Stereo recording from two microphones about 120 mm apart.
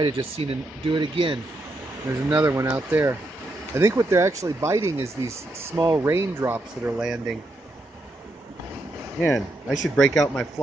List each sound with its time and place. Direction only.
0.0 s speech: 50° right (ahead or behind)
2.3 s speech: 25° right (ahead or behind); by 7.2 s 10° right (ahead or behind)
9.2 s speech: 5° left (ahead or behind)